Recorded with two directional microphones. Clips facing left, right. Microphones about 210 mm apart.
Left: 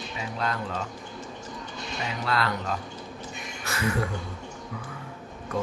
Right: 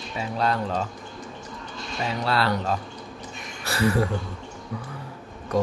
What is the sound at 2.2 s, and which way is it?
A man's voice, 30° right (ahead or behind).